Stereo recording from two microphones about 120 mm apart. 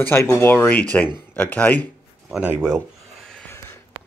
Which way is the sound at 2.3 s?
10° right (ahead or behind).